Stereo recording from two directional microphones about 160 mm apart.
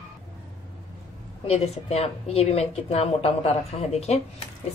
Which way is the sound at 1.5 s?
40° left (ahead or behind).